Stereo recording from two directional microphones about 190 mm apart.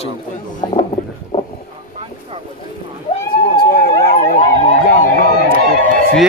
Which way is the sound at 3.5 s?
50° left (ahead or behind).